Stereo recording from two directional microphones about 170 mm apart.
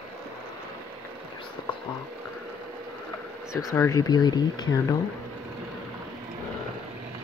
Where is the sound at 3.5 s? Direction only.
15° left (ahead or behind).